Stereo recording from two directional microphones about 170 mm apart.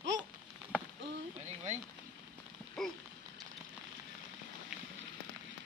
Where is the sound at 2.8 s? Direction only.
Centre (ahead or behind).